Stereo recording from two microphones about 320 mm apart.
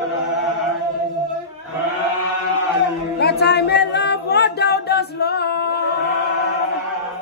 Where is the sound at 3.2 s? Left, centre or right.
Left.